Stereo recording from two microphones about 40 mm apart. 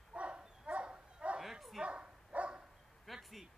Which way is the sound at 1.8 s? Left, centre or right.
Right.